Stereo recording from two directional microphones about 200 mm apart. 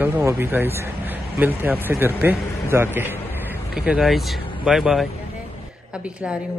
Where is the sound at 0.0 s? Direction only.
10° right (ahead or behind).